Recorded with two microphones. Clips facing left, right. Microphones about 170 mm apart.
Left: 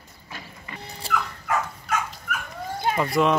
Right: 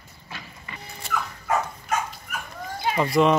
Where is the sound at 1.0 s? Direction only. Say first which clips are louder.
Left 2 dB; 30° left (ahead or behind).